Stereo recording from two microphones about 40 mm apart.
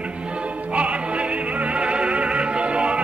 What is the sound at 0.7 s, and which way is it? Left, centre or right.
Music, right.